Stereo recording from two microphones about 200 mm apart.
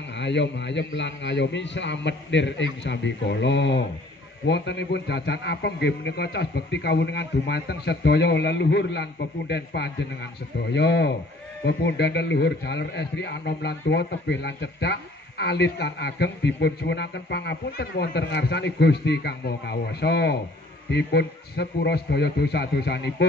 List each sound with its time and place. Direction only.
0.2 s a man's voice: 60° left (ahead or behind)